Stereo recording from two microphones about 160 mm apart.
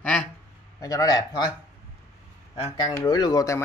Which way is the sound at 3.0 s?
25° left (ahead or behind).